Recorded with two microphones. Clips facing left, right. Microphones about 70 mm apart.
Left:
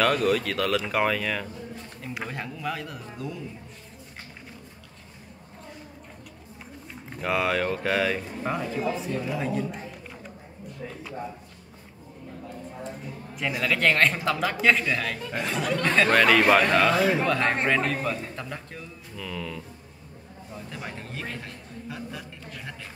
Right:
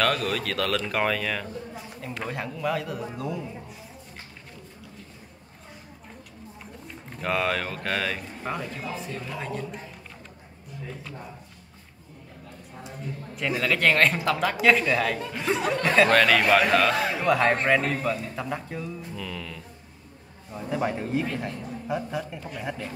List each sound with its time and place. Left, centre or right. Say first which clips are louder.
0.0 s speech: left 3 dB; centre
7.1 s speech: left 1 dB; centre
13.0 s speech: right 3 dB; centre
15.4 s speech: right 3 dB; right
15.8 s speech: right 2 dB; centre
16.1 s a man's voice: left 1 dB; centre
20.5 s a man's voice: right 10 dB; centre